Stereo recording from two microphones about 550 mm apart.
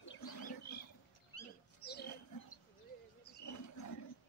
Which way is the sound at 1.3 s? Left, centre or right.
Left.